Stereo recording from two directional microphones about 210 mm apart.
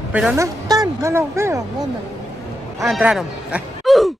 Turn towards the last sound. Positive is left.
turn(degrees=0)  # may be behind; listen again after turning